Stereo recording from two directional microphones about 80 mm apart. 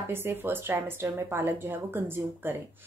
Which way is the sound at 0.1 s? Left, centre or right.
Right.